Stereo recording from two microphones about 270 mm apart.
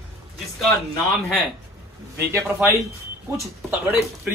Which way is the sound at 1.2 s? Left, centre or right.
Centre.